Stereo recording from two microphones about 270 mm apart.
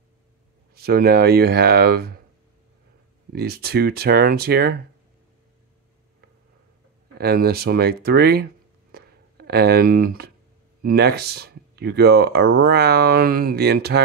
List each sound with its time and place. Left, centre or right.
0.7 s speech: right
3.3 s speech: right
7.2 s speech: right
8.9 s a sound: right
10.8 s speech: right